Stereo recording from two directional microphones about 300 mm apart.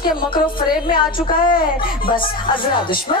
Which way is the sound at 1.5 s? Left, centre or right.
Left.